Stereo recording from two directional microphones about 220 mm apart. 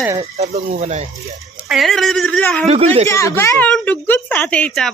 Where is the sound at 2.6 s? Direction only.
30° right (ahead or behind).